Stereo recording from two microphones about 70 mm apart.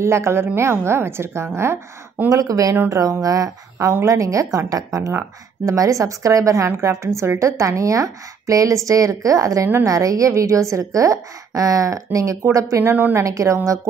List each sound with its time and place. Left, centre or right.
0.0 s a woman's voice: right
2.2 s speech: right
3.7 s a woman's voice: right